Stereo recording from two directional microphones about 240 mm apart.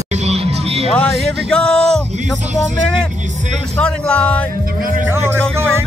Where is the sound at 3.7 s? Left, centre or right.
Centre.